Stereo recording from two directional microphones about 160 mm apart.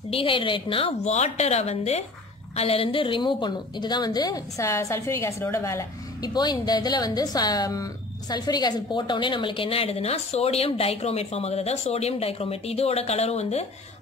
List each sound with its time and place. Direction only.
0.1 s a woman's voice: 35° left (ahead or behind)